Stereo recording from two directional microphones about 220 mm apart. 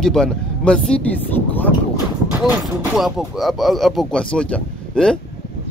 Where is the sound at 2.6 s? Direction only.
Centre (ahead or behind).